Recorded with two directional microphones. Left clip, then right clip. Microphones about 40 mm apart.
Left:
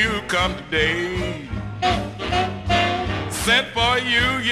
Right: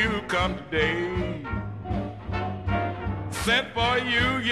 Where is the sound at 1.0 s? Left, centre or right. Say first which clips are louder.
Left 4 dB; right.